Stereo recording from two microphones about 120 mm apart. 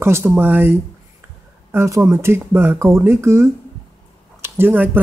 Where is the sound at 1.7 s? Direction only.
25° right (ahead or behind).